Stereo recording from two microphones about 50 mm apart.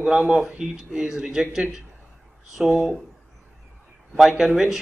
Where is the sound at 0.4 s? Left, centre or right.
Centre.